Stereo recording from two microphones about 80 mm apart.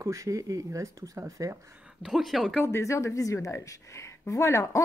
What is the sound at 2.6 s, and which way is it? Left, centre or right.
Speech, left.